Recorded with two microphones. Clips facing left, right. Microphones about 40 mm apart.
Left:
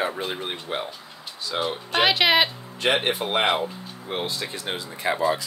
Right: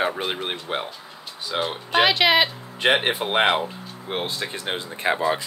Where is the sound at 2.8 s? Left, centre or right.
Centre.